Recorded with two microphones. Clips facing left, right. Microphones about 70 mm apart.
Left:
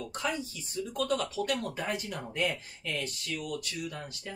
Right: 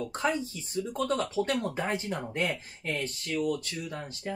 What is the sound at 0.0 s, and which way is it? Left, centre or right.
Speech, right.